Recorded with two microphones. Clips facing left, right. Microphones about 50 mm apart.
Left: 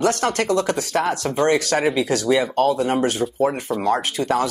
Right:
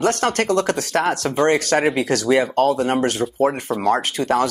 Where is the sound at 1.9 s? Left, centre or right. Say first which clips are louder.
Right 1 dB; right.